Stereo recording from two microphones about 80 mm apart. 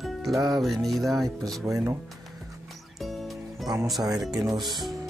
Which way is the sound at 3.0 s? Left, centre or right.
Centre.